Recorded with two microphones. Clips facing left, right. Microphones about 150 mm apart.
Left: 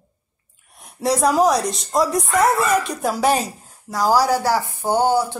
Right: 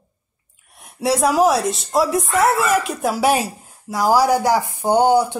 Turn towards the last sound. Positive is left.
turn(degrees=-15)  # may be behind; listen again after turning